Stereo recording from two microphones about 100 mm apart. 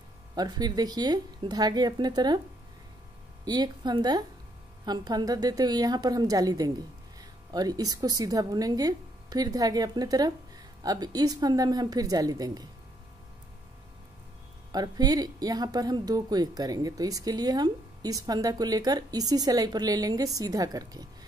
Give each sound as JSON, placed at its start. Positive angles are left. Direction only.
{"t": 0.3, "sound": "speech", "side_deg": -40}
{"t": 3.4, "sound": "a woman's voice", "side_deg": -40}
{"t": 14.7, "sound": "a woman's voice", "side_deg": -40}